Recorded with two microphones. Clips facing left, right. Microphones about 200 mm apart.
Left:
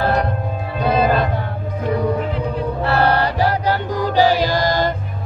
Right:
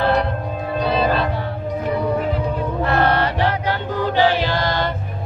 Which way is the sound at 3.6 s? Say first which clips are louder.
Left 3 dB; 40° left (ahead or behind).